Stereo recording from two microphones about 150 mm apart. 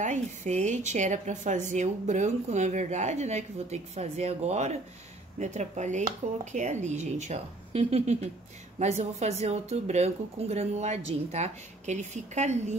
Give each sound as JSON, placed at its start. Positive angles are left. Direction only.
{"t": 0.0, "sound": "speech", "side_deg": -55}